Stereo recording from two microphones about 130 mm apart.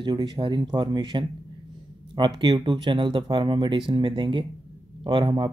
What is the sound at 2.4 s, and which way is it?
Speech, 40° right (ahead or behind).